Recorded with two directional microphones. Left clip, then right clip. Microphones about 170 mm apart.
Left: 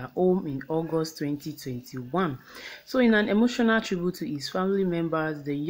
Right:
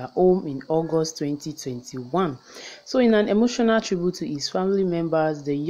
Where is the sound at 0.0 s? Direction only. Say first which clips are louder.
Right 5 dB; 20° right (ahead or behind).